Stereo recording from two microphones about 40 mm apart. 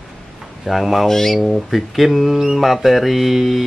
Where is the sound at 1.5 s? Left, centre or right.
Centre.